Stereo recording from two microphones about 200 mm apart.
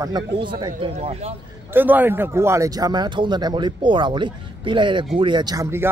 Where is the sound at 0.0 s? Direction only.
20° right (ahead or behind).